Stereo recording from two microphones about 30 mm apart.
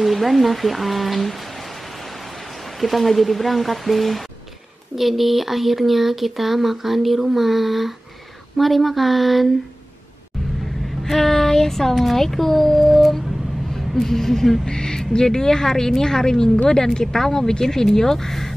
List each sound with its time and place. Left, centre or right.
0.0 s speech: centre
2.8 s speech: centre
11.1 s speech: centre
11.9 s speech: centre
14.7 s speech: left